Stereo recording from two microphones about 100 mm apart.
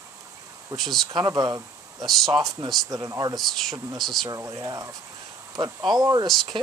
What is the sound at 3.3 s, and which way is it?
Speech, centre (ahead or behind).